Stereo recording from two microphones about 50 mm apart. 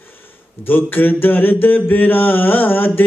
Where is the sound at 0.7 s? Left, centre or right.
Left.